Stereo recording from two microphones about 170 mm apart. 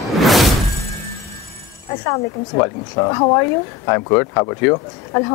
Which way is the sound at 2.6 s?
20° left (ahead or behind).